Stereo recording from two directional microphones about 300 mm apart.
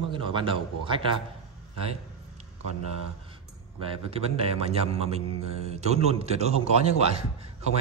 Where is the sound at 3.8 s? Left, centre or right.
Centre.